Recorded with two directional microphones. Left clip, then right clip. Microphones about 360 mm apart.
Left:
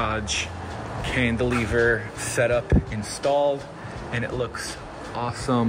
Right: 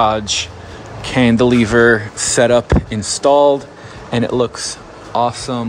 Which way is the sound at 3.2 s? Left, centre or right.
Right.